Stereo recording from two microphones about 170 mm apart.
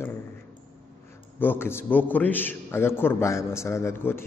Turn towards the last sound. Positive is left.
turn(degrees=15)  # may be behind; listen again after turning